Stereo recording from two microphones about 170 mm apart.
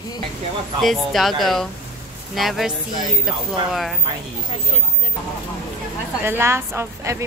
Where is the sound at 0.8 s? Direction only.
Centre (ahead or behind).